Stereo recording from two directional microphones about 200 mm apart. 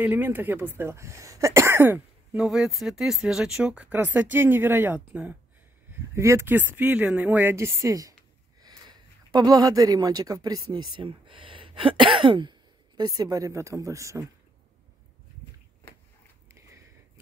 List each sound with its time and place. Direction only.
0.0 s speech: 10° right (ahead or behind)